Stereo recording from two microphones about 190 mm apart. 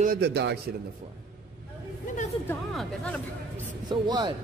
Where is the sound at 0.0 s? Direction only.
55° right (ahead or behind).